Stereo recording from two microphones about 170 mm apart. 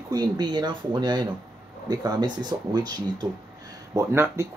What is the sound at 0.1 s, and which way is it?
Speech, 25° right (ahead or behind).